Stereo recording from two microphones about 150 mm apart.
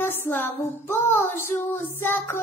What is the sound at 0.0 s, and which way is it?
Child singing, 15° left (ahead or behind).